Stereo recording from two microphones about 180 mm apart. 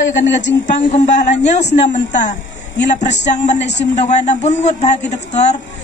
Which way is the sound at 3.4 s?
40° left (ahead or behind).